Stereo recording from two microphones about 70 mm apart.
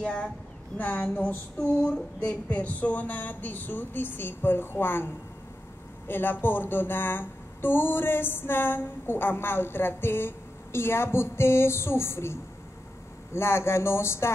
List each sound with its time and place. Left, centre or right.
0.0 s speech: centre
0.7 s a sound: left
6.0 s a woman's voice: left